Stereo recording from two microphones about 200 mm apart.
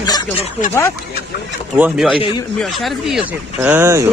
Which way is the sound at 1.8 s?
5° right (ahead or behind).